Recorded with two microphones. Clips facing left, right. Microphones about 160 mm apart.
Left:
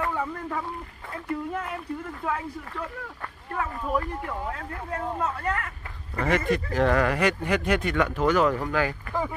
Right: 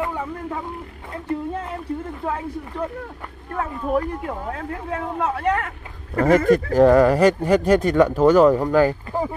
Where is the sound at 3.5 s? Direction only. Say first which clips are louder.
Right 5 dB; 45° right (ahead or behind); by 6.2 s 65° right (ahead or behind).